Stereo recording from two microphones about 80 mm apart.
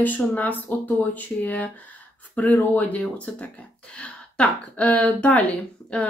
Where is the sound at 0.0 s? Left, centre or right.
Left.